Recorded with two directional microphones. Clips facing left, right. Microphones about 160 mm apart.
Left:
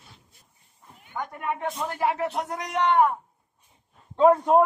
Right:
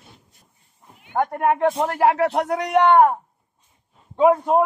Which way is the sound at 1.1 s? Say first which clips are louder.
Right 11 dB; 60° right (ahead or behind).